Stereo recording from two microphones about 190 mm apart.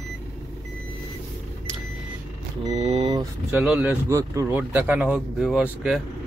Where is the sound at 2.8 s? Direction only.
30° right (ahead or behind).